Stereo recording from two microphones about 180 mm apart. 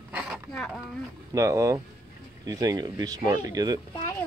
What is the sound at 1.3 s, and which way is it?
Speech, 15° right (ahead or behind).